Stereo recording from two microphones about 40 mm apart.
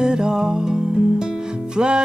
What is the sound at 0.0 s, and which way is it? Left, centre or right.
Music, centre.